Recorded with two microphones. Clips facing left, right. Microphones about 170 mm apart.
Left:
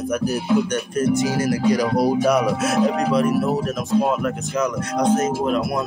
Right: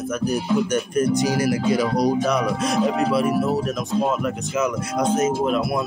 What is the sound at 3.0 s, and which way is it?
Speech, 5° right (ahead or behind).